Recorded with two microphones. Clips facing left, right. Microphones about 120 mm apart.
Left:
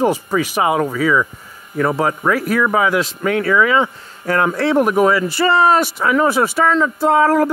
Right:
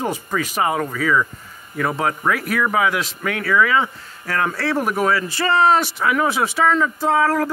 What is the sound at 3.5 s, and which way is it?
Speech, 15° left (ahead or behind).